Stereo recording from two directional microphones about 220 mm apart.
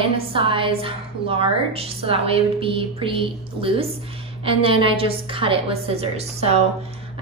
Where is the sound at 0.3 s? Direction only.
25° right (ahead or behind).